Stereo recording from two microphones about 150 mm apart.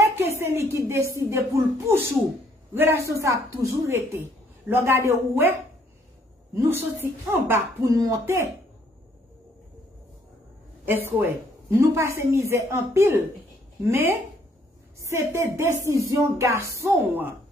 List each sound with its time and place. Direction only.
0.0 s a woman's voice: 15° right (ahead or behind)
10.9 s speech: 15° right (ahead or behind)